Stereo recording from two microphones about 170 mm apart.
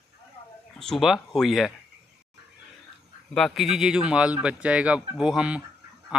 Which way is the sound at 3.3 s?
Centre (ahead or behind).